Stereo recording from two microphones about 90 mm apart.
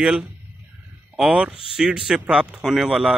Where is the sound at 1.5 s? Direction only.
90° left.